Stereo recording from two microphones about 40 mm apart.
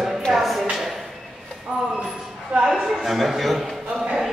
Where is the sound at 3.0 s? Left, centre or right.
Centre.